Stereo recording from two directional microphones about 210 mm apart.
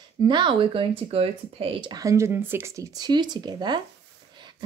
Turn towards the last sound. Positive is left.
turn(degrees=-20)  # may be behind; listen again after turning